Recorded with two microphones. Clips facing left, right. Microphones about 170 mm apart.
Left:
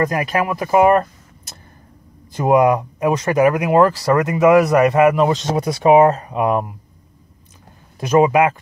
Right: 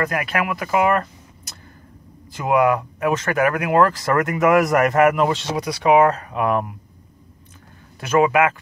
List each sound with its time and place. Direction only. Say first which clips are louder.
0.1 s speech: left 4 dB; 25° left (ahead or behind)
2.5 s speech: left 3 dB; 20° left (ahead or behind)
5.3 s speech: left 4 dB; 45° left (ahead or behind)
6.1 s speech: left 3 dB; 20° left (ahead or behind)
8.2 s speech: left 3 dB; 20° left (ahead or behind)